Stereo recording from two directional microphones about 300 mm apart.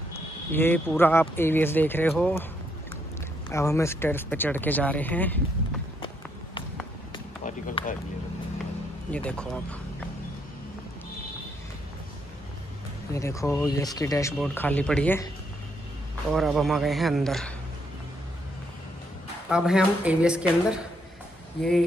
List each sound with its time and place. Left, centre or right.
0.5 s speech: centre
3.4 s speech: centre
5.9 s run: centre
7.4 s a sound: left
9.1 s speech: centre
13.1 s speech: centre
16.3 s speech: centre
19.5 s speech: centre